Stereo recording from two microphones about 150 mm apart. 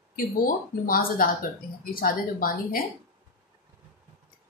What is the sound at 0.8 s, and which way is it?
Speech, 75° left (ahead or behind).